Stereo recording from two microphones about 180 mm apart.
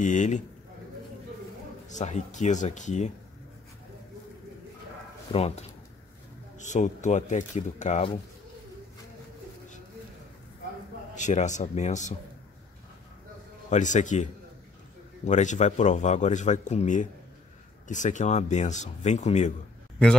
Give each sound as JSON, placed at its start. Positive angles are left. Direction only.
{"t": 0.0, "sound": "a man's voice", "side_deg": 40}
{"t": 1.9, "sound": "speech", "side_deg": 40}
{"t": 5.3, "sound": "speech", "side_deg": 35}
{"t": 11.1, "sound": "speech", "side_deg": 40}
{"t": 13.7, "sound": "a man's voice", "side_deg": 40}